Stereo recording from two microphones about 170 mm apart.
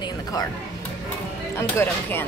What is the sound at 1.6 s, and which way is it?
Speech, 10° left (ahead or behind).